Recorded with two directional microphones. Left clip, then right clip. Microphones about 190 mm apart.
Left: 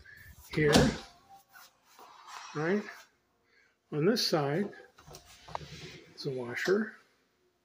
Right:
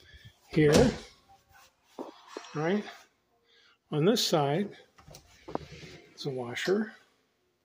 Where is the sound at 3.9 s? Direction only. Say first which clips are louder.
Right 2 dB; 35° right (ahead or behind).